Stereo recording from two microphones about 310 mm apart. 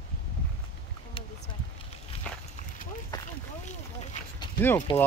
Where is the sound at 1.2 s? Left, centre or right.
Centre.